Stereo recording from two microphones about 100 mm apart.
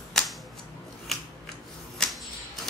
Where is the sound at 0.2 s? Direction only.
5° left (ahead or behind).